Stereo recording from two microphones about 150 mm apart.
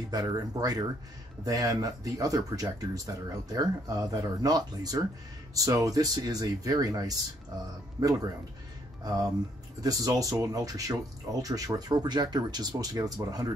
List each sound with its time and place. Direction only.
0.1 s speech: 25° right (ahead or behind)
9.8 s speech: 25° right (ahead or behind)